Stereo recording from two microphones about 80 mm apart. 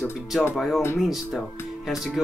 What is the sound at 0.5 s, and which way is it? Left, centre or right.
Speech, centre.